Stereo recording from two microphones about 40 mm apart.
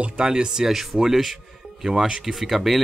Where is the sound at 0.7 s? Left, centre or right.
Centre.